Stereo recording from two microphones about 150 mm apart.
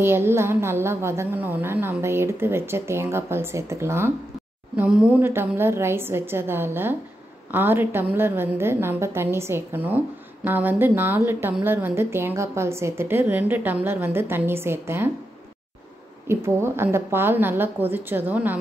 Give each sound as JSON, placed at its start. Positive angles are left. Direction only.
{"t": 0.0, "sound": "a woman's voice", "side_deg": -15}
{"t": 16.3, "sound": "a woman's voice", "side_deg": -15}